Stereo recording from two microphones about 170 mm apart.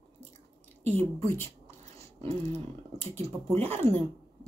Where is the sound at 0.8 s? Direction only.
40° right (ahead or behind).